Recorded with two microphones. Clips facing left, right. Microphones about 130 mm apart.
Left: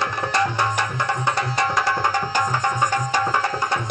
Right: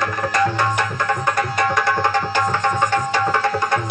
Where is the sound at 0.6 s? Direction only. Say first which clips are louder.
Right 2 dB; 15° left (ahead or behind).